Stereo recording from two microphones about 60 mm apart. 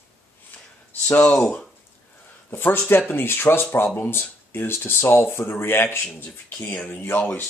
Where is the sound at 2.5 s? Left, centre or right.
Left.